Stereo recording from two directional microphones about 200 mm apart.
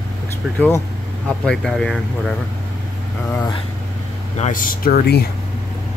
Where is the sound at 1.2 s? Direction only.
5° left (ahead or behind).